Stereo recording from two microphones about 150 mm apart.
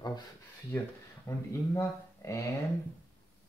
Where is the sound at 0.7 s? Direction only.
15° left (ahead or behind).